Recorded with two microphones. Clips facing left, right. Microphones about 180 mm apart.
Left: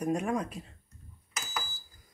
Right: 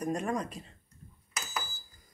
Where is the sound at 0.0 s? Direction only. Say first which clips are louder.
Left 2 dB; 5° left (ahead or behind).